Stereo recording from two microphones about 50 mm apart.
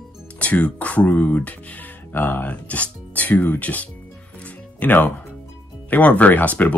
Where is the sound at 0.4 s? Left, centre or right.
Left.